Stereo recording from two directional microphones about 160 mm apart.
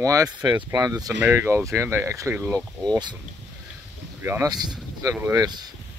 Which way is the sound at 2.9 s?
30° right (ahead or behind).